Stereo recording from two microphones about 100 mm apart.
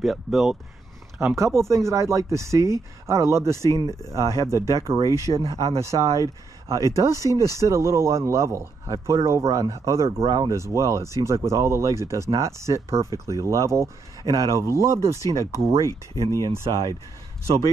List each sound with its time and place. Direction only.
0.0 s speech: centre (ahead or behind)
1.2 s speech: 30° right (ahead or behind)
15.8 s speech: 35° left (ahead or behind)
16.6 s speech: 55° right (ahead or behind)